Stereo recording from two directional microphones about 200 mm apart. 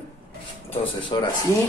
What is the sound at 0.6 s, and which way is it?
Speech, 30° left (ahead or behind).